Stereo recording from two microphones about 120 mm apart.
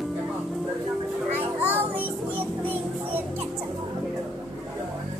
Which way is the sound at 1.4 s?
15° right (ahead or behind).